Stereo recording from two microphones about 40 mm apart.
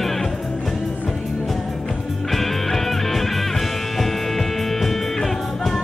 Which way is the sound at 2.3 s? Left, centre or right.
Centre.